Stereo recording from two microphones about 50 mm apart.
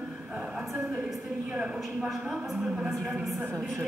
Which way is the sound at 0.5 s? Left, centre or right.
Right.